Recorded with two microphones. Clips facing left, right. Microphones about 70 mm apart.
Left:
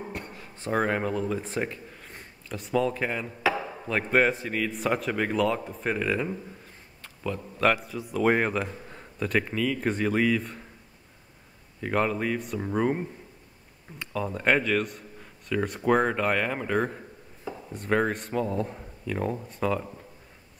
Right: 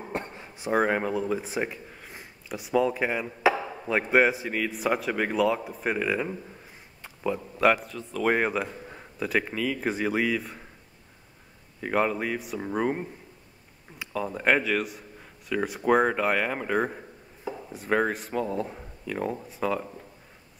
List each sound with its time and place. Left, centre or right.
0.1 s a sound: right
0.6 s a man's voice: centre
7.9 s speech: centre
11.8 s speech: centre